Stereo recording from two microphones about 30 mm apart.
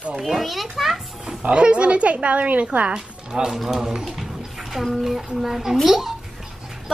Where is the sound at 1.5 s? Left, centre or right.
Right.